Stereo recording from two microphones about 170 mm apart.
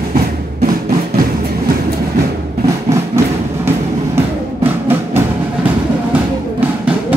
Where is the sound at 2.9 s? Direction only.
15° right (ahead or behind).